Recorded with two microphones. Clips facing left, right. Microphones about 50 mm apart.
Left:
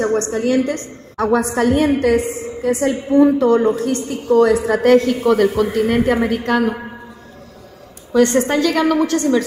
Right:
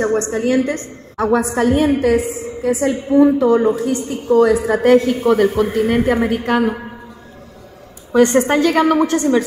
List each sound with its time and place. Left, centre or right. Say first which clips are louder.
0.0 s a woman's voice: even; centre
1.1 s a woman's voice: even; centre
8.1 s a woman's voice: right 2 dB; right